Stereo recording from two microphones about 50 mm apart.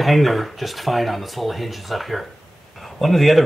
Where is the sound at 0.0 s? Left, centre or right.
Centre.